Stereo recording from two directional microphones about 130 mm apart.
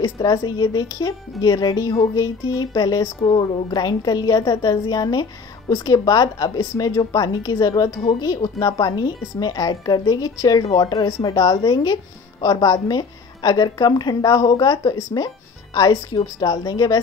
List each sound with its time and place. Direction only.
0.0 s a woman's voice: 35° left (ahead or behind)